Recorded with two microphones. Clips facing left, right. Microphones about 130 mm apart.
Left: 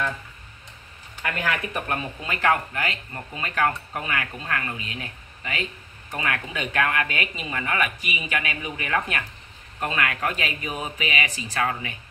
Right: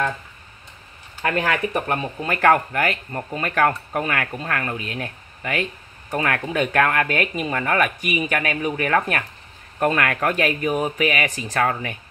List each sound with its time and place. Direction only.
1.2 s speech: 35° right (ahead or behind)
2.2 s speech: 55° right (ahead or behind)